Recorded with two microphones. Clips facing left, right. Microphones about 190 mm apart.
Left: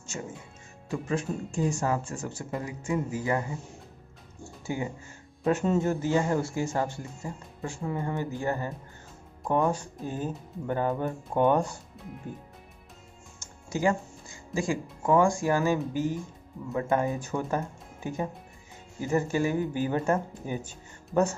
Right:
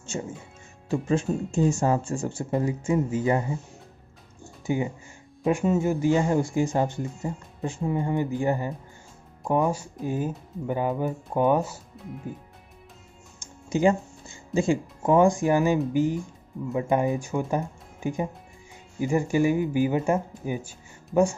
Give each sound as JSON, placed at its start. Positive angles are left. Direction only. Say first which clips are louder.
{"t": 0.1, "sound": "speech", "louder": "right 5 dB", "side_deg": -25}
{"t": 4.6, "sound": "speech", "louder": "right 6 dB", "side_deg": -20}
{"t": 13.4, "sound": "speech", "louder": "right 6 dB", "side_deg": -20}